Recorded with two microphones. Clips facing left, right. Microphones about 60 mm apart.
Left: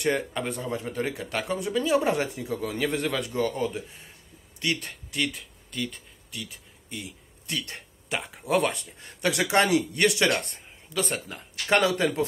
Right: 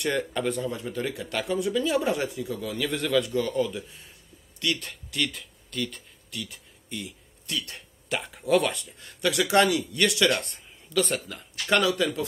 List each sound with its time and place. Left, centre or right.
0.3 s speech: left
6.9 s a sound: left
7.5 s speech: left
8.1 s speech: centre
8.5 s speech: left